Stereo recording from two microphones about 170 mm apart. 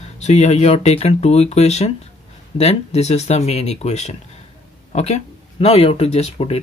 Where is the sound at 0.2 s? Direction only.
40° left (ahead or behind).